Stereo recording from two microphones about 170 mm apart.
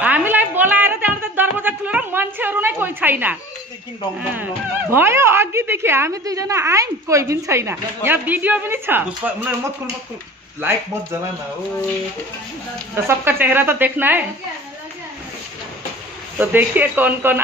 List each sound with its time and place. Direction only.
0.0 s a sound: 10° right (ahead or behind)
4.9 s a woman's voice: 15° right (ahead or behind)
12.9 s a woman's voice: 15° right (ahead or behind)
16.3 s a woman's voice: 10° right (ahead or behind)